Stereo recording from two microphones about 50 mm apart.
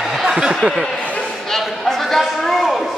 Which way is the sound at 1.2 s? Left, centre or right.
Centre.